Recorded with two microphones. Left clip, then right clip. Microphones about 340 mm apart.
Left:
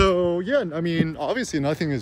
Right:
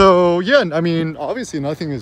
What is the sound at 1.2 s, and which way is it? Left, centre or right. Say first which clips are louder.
Speech: right 2 dB; centre.